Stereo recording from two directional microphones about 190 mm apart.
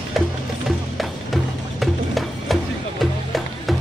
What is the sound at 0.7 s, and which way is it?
Music, centre (ahead or behind).